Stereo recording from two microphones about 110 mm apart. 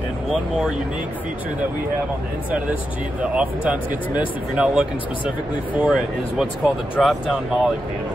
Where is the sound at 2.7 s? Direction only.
10° right (ahead or behind).